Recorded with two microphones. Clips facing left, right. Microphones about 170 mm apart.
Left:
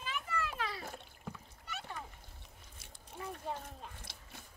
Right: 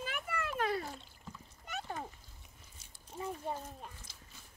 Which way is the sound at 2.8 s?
65° left (ahead or behind).